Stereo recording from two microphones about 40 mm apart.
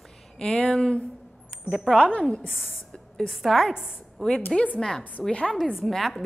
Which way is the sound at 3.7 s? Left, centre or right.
Centre.